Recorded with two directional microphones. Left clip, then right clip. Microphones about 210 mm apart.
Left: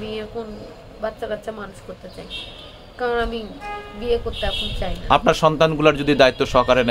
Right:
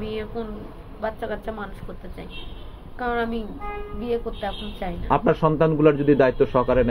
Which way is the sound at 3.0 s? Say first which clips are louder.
Left 3 dB; 15° left (ahead or behind).